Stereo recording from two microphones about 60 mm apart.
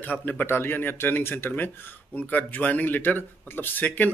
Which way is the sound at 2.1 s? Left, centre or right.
Left.